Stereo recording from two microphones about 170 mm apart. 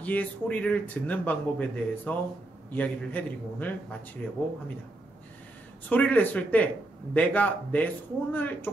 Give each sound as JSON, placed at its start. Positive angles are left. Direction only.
{"t": 0.0, "sound": "speech", "side_deg": 10}
{"t": 5.9, "sound": "speech", "side_deg": 10}